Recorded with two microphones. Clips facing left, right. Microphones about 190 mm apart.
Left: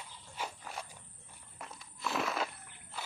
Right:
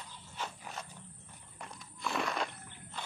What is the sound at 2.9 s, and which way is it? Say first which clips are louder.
Wild animals: even; 5° left (ahead or behind).